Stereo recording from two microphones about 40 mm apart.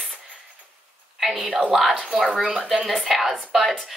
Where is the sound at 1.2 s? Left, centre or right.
Centre.